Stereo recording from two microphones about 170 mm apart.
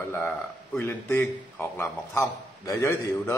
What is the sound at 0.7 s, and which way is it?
Speech, 15° left (ahead or behind).